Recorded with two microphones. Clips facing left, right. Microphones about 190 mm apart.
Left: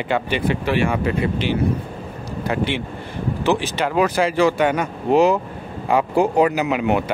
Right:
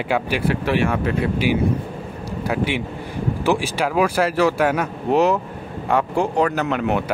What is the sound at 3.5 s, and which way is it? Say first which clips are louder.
Speech: even; 10° right (ahead or behind).